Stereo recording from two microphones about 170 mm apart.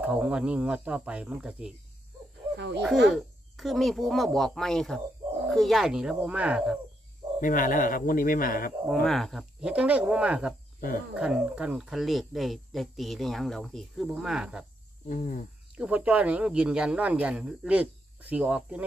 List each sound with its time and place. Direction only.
0.0 s speech: 10° right (ahead or behind)
2.5 s speech: 90° right
3.1 s speech: centre (ahead or behind)
7.3 s speech: 50° left (ahead or behind)
9.0 s speech: centre (ahead or behind)
15.0 s cricket: 50° left (ahead or behind)
15.8 s speech: 10° right (ahead or behind)